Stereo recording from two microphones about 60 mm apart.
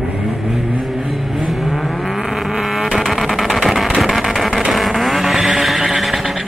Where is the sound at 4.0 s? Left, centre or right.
Centre.